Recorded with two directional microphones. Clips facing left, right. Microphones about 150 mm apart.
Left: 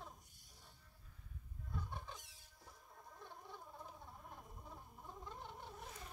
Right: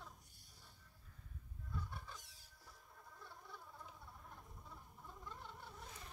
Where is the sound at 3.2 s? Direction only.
20° left (ahead or behind).